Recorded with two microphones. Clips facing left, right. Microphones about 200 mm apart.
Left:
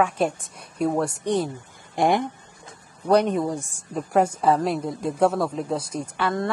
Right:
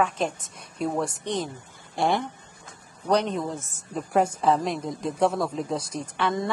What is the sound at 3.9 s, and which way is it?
A woman's voice, centre (ahead or behind).